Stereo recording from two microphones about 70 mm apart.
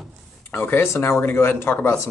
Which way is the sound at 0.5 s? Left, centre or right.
Left.